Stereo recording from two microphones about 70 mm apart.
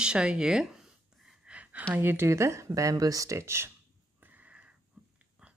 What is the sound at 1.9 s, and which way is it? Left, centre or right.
Speech, right.